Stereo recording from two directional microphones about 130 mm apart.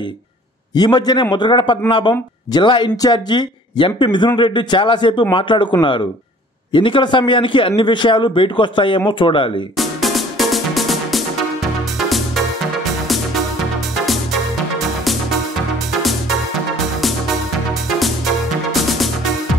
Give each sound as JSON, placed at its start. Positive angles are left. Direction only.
{"t": 0.7, "sound": "a man's voice", "side_deg": 30}
{"t": 9.8, "sound": "music", "side_deg": 0}
{"t": 15.9, "sound": "music", "side_deg": 0}
{"t": 17.8, "sound": "music", "side_deg": 0}